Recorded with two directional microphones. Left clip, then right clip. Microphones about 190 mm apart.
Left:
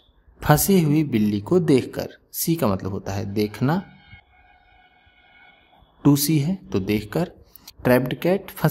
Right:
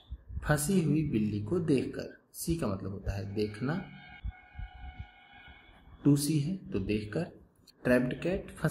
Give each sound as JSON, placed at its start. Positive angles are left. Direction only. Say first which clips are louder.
{"t": 0.4, "sound": "speech", "louder": "left 12 dB", "side_deg": 55}
{"t": 6.0, "sound": "speech", "louder": "left 9 dB", "side_deg": 55}